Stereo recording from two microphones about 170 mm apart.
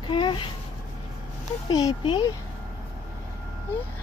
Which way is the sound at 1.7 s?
25° left (ahead or behind).